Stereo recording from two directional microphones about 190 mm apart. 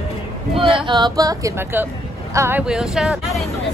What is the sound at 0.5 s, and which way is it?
Speech, 25° right (ahead or behind).